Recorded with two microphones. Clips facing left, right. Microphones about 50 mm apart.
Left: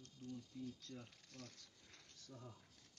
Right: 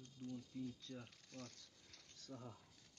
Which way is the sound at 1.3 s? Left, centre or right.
Centre.